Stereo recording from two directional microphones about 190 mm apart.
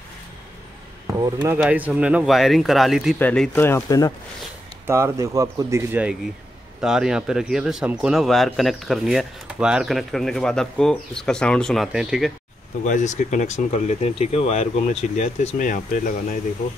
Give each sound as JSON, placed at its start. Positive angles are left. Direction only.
{"t": 1.1, "sound": "speech", "side_deg": -20}
{"t": 1.6, "sound": "speech", "side_deg": -10}
{"t": 4.8, "sound": "speech", "side_deg": -15}
{"t": 12.8, "sound": "speech", "side_deg": 40}